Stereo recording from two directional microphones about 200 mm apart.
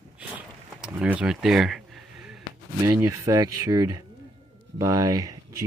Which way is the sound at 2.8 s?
15° right (ahead or behind).